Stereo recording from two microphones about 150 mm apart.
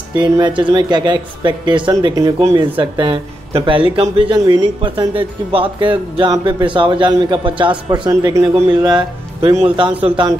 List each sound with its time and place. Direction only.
0.1 s speech: 30° right (ahead or behind)
8.1 s a man's voice: 20° right (ahead or behind)